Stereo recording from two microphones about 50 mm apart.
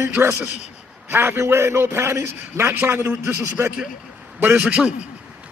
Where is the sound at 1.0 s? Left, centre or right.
Right.